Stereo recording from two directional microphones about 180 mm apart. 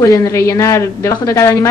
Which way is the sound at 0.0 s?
20° left (ahead or behind).